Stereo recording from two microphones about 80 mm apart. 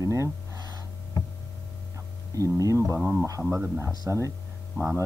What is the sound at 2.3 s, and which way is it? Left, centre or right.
Speech, right.